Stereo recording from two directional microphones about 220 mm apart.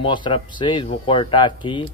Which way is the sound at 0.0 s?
20° left (ahead or behind).